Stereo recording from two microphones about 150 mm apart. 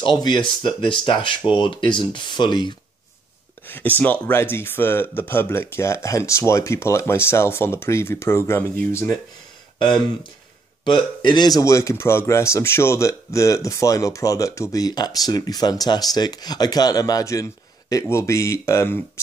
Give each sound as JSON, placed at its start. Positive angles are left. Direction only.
{"t": 0.0, "sound": "speech", "side_deg": 30}
{"t": 3.6, "sound": "speech", "side_deg": 15}
{"t": 9.8, "sound": "speech", "side_deg": 30}